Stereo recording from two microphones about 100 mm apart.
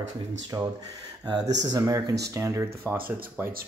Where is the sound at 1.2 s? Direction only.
40° right (ahead or behind).